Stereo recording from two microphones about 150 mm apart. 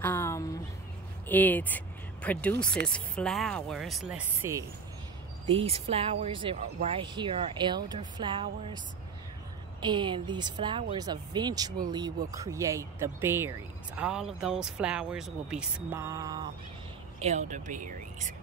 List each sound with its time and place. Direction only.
0.0 s a sound: 15° left (ahead or behind)
1.3 s speech: 10° left (ahead or behind)
4.4 s speech: 20° right (ahead or behind)
5.5 s a woman's voice: 40° right (ahead or behind)
6.5 s speech: 45° right (ahead or behind)
7.2 s a woman's voice: 35° right (ahead or behind)
9.8 s a woman's voice: 30° right (ahead or behind); by 15.6 s 5° right (ahead or behind)
15.9 s speech: 20° right (ahead or behind)
17.2 s speech: 50° right (ahead or behind)